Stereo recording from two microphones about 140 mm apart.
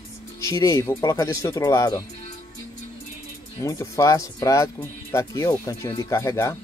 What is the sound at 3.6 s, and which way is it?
Speech, 20° left (ahead or behind).